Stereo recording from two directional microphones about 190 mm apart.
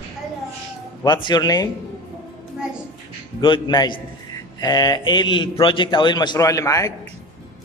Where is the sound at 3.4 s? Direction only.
25° left (ahead or behind).